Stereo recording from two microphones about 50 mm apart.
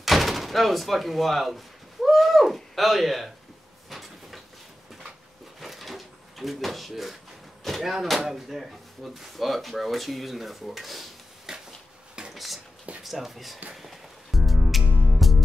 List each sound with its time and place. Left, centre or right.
0.0 s speech: centre
2.0 s a sound: centre
5.6 s drawer open or close: centre
7.6 s speech: centre
12.2 s dishes: centre
13.0 s speech: centre
13.7 s music: centre